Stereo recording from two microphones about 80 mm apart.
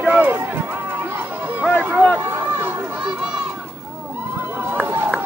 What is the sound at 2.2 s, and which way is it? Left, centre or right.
Run, right.